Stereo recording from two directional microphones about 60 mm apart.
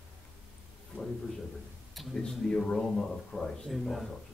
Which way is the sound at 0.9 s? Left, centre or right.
Right.